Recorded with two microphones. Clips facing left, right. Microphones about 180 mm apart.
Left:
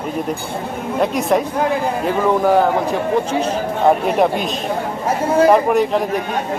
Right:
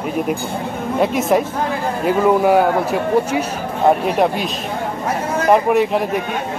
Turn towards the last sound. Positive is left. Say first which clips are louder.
# even
turn(degrees=-5)  # may be behind; listen again after turning